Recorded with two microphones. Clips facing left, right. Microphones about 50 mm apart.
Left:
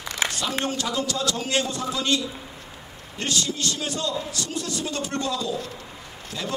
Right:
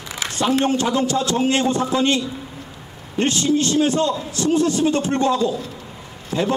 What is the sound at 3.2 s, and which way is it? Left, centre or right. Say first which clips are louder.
A man's voice: right 9 dB; right.